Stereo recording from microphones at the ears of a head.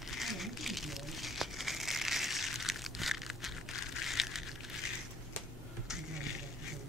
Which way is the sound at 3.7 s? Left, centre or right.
Left.